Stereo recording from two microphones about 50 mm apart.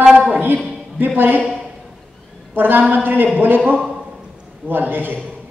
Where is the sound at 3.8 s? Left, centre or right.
Centre.